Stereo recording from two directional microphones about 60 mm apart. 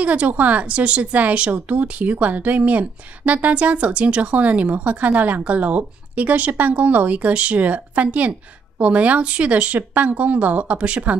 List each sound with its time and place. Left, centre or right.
0.0 s speech: right